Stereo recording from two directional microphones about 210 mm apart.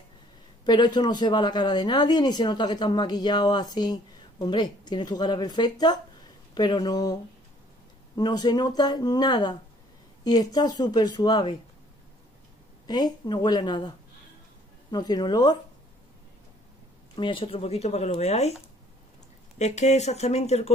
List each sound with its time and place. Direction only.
0.7 s speech: 20° left (ahead or behind)
8.2 s speech: 20° left (ahead or behind)
12.8 s speech: 20° left (ahead or behind)
17.1 s speech: 25° left (ahead or behind)
19.6 s speech: 35° left (ahead or behind)